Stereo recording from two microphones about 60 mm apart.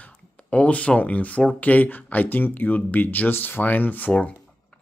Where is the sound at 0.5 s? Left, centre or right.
Left.